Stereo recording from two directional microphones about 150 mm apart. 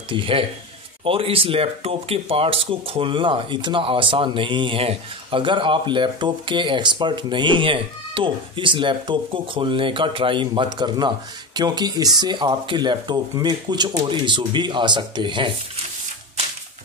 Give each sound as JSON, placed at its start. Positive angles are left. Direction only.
{"t": 0.1, "sound": "speech", "side_deg": -35}